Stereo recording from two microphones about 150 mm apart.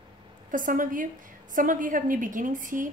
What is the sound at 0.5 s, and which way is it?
A woman's voice, 65° right (ahead or behind).